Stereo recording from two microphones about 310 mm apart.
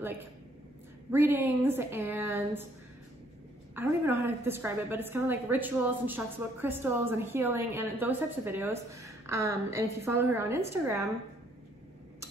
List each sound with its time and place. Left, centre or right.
1.1 s a woman's voice: centre
3.7 s a woman's voice: centre